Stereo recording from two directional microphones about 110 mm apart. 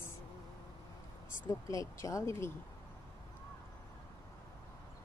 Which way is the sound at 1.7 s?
30° left (ahead or behind).